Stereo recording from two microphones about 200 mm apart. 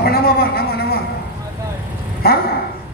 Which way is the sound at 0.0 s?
50° left (ahead or behind).